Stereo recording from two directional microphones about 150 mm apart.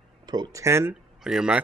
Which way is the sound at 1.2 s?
5° right (ahead or behind).